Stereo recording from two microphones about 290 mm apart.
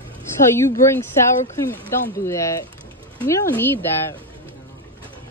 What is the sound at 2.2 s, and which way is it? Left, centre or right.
A woman's voice, centre.